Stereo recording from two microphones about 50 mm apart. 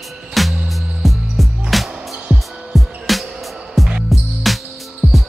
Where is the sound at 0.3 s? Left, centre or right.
Centre.